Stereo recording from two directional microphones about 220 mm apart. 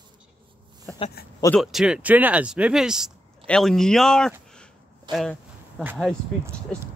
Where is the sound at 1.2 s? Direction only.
45° left (ahead or behind).